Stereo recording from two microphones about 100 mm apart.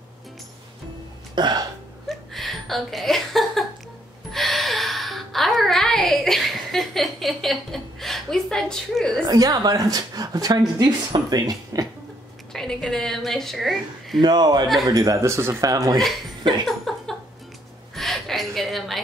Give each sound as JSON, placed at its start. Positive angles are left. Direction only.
{"t": 1.3, "sound": "hiccup", "side_deg": -45}
{"t": 2.0, "sound": "a sound", "side_deg": 0}
{"t": 9.3, "sound": "speech", "side_deg": -40}
{"t": 12.5, "sound": "a woman's voice", "side_deg": 5}
{"t": 14.2, "sound": "speech", "side_deg": -45}
{"t": 16.6, "sound": "a sound", "side_deg": 0}